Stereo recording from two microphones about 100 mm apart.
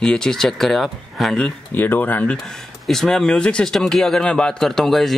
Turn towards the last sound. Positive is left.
turn(degrees=5)  # may be behind; listen again after turning